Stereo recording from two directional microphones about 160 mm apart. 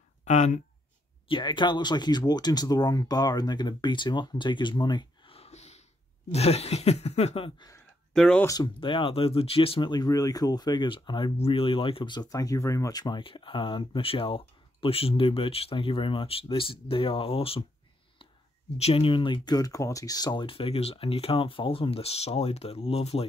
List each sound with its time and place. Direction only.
0.2 s speech: 45° left (ahead or behind)
1.3 s speech: 30° left (ahead or behind)
8.1 s speech: 5° left (ahead or behind)
8.7 s speech: 35° left (ahead or behind)
18.8 s speech: 40° left (ahead or behind)